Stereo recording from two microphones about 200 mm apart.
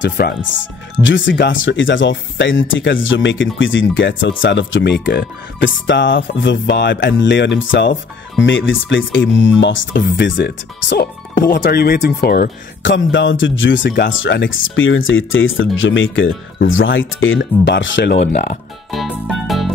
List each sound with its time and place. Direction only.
0.0 s speech: 60° left (ahead or behind)
18.2 s speech: 40° left (ahead or behind)
18.9 s music: centre (ahead or behind)